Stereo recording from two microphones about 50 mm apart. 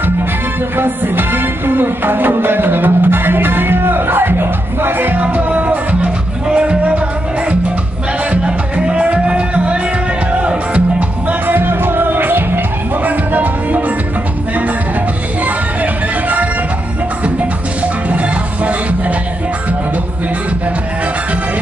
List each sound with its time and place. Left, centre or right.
0.7 s music: right
6.5 s music: right
8.3 s music: right
11.4 s music: right
15.4 s music: right
18.1 s music: right